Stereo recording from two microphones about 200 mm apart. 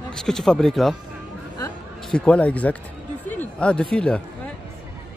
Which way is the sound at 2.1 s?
5° left (ahead or behind).